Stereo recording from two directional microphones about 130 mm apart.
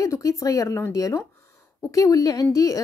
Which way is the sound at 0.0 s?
25° left (ahead or behind).